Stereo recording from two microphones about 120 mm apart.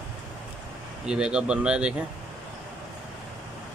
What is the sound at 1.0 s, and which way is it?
Speech, 5° right (ahead or behind).